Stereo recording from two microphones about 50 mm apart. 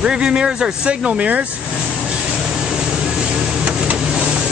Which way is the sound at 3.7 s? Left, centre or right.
Right.